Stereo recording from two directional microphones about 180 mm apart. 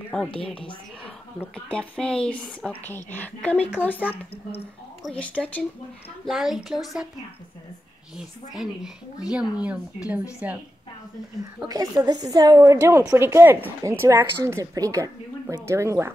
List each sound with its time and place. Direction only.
0.1 s a woman's voice: 5° left (ahead or behind)
5.0 s a woman's voice: centre (ahead or behind)
8.2 s a woman's voice: 5° right (ahead or behind)
11.6 s a woman's voice: 20° right (ahead or behind)